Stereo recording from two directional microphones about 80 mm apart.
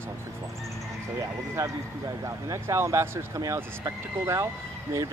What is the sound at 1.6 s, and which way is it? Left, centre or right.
Speech, right.